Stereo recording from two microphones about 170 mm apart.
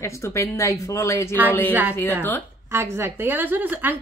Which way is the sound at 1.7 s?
10° right (ahead or behind).